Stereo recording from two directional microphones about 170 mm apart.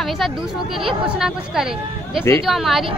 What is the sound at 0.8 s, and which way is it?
Speech, 5° right (ahead or behind).